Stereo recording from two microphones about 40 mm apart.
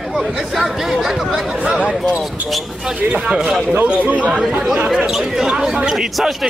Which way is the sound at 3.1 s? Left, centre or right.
Centre.